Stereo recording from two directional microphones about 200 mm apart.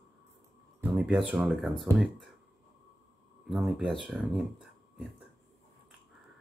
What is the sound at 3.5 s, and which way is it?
Speech, centre (ahead or behind).